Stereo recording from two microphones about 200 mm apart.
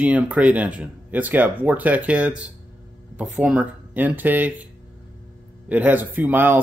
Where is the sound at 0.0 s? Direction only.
5° right (ahead or behind).